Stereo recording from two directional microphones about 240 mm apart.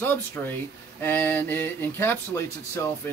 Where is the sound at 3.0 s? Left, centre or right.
Centre.